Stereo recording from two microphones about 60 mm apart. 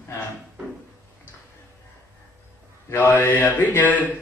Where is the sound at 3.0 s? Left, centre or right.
Left.